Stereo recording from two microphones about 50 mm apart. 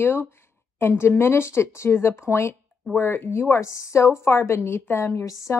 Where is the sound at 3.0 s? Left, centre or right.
Left.